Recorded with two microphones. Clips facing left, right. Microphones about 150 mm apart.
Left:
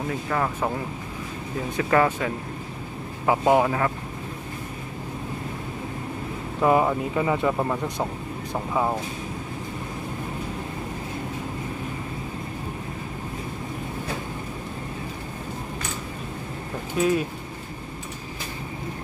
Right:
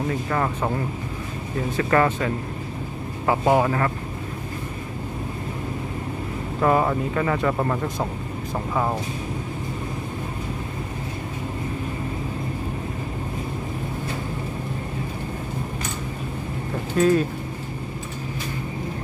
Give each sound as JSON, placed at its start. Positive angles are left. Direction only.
{"t": 0.3, "sound": "speech", "side_deg": 0}
{"t": 1.8, "sound": "speech", "side_deg": 5}
{"t": 6.6, "sound": "speech", "side_deg": 10}
{"t": 7.5, "sound": "speech", "side_deg": 0}
{"t": 16.9, "sound": "speech", "side_deg": 10}